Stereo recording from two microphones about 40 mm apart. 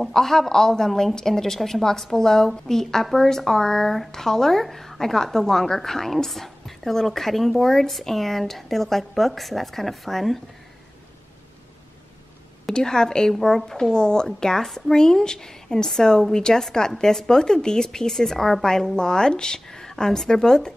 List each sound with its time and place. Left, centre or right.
0.1 s a woman's voice: centre
12.7 s a woman's voice: centre
13.3 s a woman's voice: centre